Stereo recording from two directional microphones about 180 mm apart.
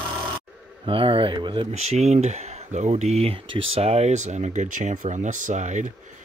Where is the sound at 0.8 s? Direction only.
30° right (ahead or behind).